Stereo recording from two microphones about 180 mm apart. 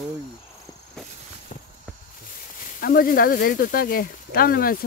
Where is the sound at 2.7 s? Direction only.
50° left (ahead or behind).